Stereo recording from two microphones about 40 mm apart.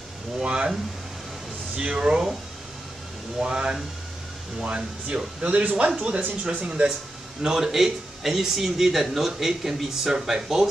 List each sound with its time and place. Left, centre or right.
0.4 s a sound: right
2.0 s speech: centre
3.3 s speech: right
6.7 s speech: right